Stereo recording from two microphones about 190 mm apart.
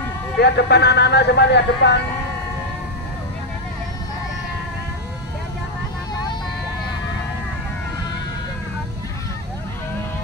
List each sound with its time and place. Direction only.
0.4 s speech: 60° left (ahead or behind)